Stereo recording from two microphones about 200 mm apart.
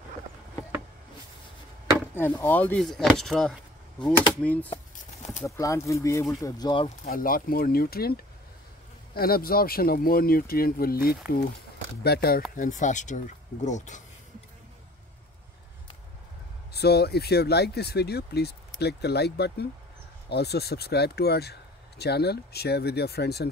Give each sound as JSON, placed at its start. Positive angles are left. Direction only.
{"t": 2.1, "sound": "speech", "side_deg": 10}
{"t": 7.1, "sound": "speech", "side_deg": 45}
{"t": 12.5, "sound": "speech", "side_deg": 40}
{"t": 16.7, "sound": "speech", "side_deg": 55}